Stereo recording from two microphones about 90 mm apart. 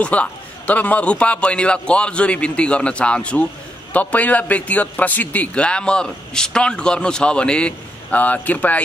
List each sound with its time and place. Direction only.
0.0 s a man's voice: 15° left (ahead or behind)